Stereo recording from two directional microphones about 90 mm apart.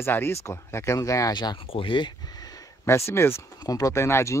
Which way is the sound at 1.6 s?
80° left.